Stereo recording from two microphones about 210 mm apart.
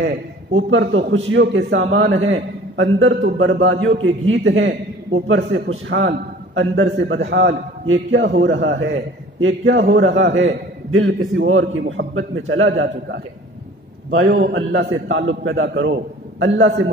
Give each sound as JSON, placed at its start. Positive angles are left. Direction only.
{"t": 0.5, "sound": "a man's voice", "side_deg": -65}